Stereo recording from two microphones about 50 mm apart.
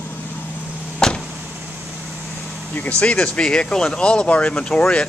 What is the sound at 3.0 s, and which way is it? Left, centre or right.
Speech, left.